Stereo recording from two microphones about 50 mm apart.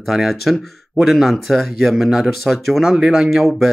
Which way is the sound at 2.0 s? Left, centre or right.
Centre.